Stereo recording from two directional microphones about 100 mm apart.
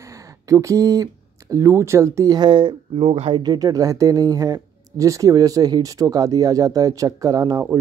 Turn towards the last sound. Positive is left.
turn(degrees=-35)  # may be behind; listen again after turning